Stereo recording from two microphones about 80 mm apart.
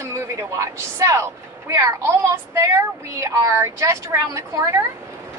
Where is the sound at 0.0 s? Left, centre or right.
Right.